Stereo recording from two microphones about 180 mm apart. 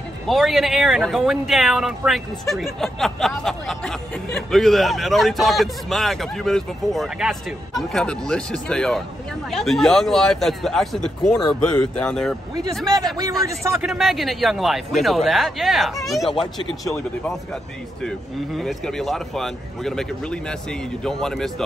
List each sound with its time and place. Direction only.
0.3 s speech: centre (ahead or behind)
13.2 s a man's voice: 20° right (ahead or behind)
13.7 s speech: centre (ahead or behind)
16.8 s speech: 15° left (ahead or behind)
18.0 s speech: centre (ahead or behind)